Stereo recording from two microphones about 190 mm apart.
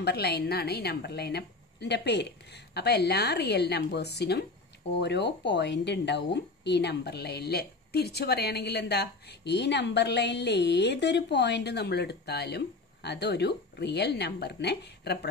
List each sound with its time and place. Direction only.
0.0 s speech: 60° left (ahead or behind)